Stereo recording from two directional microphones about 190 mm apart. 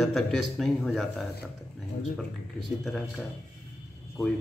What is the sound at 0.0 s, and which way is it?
A man's voice, centre (ahead or behind).